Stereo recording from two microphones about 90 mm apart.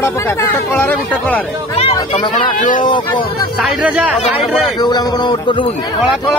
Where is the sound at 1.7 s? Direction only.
90° left.